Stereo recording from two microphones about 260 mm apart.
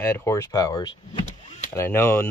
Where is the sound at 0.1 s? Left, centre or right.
Centre.